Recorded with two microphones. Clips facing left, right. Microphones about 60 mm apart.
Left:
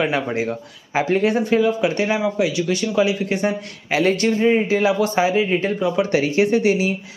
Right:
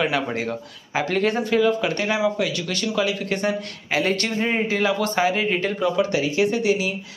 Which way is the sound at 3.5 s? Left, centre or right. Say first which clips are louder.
Left 2 dB; left.